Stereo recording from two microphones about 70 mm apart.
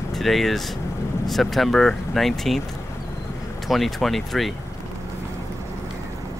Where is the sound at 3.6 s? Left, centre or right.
Centre.